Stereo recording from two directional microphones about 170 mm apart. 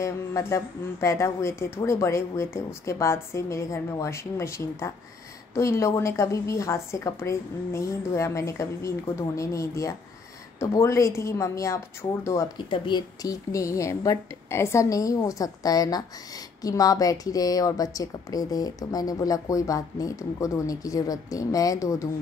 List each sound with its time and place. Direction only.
0.0 s a woman's voice: 15° left (ahead or behind)
12.6 s a woman's voice: 30° left (ahead or behind)